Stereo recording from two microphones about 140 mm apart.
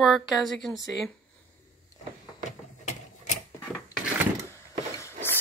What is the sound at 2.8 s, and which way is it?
Mechanisms, 60° left (ahead or behind).